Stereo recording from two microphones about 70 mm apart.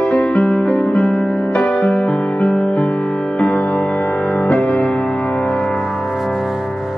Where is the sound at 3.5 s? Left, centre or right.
Centre.